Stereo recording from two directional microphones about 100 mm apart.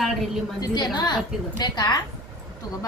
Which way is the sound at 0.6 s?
45° left (ahead or behind).